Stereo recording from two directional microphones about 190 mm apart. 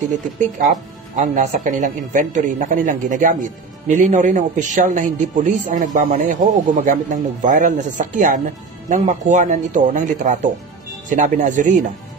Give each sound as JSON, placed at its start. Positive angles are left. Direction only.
{"t": 0.7, "sound": "a man's voice", "side_deg": -40}